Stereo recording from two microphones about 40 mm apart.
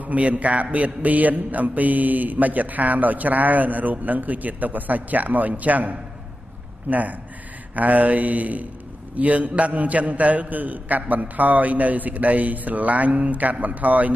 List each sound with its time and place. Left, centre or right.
0.0 s a man's voice: right